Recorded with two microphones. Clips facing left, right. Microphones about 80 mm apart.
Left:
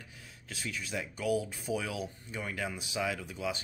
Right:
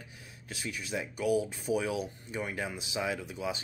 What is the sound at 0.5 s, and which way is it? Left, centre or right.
Speech, centre.